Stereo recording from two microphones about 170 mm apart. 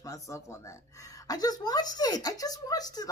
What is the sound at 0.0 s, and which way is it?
A woman's voice, 20° left (ahead or behind).